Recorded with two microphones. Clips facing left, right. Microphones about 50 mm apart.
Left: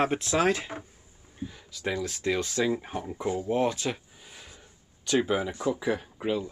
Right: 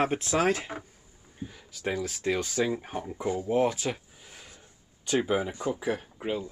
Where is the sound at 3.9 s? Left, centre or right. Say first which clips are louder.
Even; centre.